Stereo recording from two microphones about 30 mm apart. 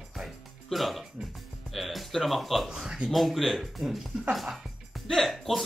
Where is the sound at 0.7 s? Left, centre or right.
Centre.